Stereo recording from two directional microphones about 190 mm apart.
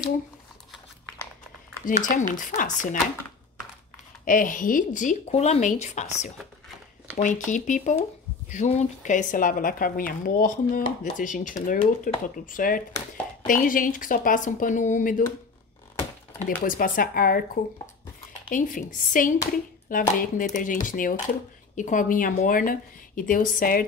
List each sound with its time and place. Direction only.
1.9 s a woman's voice: 45° left (ahead or behind)
4.2 s a woman's voice: 45° left (ahead or behind)
16.6 s a woman's voice: 45° left (ahead or behind)
18.5 s a woman's voice: 45° left (ahead or behind)